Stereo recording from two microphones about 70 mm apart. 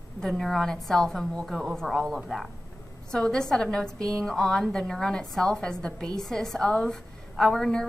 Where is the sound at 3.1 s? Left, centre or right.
Centre.